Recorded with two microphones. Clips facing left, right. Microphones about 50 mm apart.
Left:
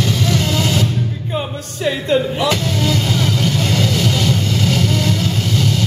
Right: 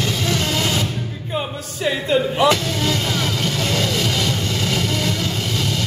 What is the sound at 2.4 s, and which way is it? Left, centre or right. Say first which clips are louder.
Music: right 1 dB; centre.